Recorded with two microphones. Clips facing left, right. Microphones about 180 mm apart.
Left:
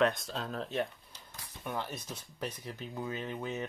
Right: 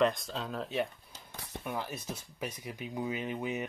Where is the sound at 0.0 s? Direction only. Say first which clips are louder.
Right 1 dB; centre (ahead or behind).